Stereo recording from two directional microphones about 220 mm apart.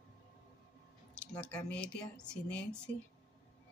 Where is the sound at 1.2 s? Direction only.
5° left (ahead or behind).